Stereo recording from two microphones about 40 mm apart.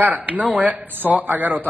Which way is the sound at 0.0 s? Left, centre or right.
Right.